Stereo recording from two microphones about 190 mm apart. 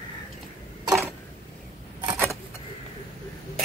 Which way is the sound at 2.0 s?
15° right (ahead or behind).